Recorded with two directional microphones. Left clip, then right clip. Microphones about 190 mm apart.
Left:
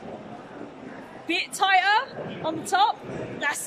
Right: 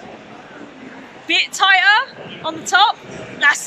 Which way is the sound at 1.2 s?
10° left (ahead or behind).